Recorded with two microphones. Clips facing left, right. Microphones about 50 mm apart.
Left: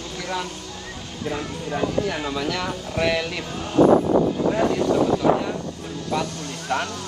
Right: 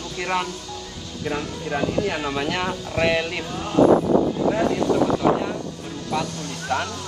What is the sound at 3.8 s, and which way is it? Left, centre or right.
Speech, left.